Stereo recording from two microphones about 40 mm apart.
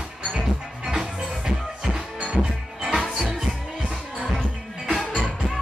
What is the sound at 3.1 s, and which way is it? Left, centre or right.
Music, centre.